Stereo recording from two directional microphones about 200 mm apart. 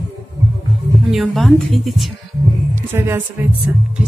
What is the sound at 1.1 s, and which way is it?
Speech, centre (ahead or behind).